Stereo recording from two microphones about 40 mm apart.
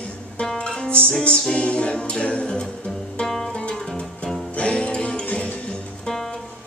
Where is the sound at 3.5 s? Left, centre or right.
Left.